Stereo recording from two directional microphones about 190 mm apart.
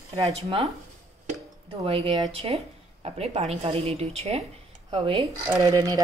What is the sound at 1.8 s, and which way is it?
Speech, 30° right (ahead or behind).